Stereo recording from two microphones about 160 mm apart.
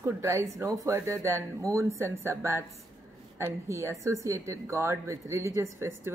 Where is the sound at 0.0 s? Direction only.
20° right (ahead or behind).